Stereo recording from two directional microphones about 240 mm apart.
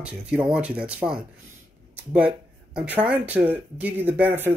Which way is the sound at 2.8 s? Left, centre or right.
Centre.